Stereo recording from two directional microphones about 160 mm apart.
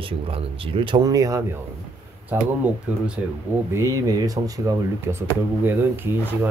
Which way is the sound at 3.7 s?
20° right (ahead or behind).